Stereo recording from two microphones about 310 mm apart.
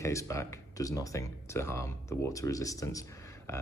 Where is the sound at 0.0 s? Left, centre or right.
Centre.